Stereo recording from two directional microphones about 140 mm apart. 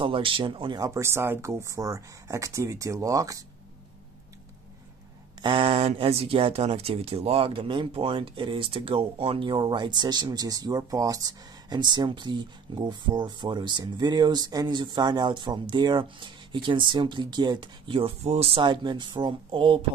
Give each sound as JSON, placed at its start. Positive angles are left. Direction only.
{"t": 0.0, "sound": "speech", "side_deg": -40}
{"t": 5.4, "sound": "speech", "side_deg": -35}